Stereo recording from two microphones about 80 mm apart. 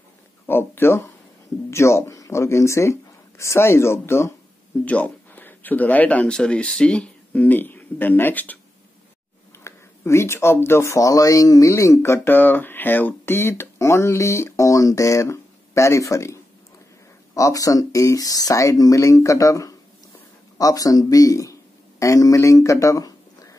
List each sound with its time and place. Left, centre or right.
0.5 s speech: left
4.8 s speech: centre
9.6 s speech: left